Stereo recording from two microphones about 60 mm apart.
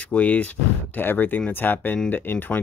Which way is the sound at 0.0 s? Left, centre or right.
Left.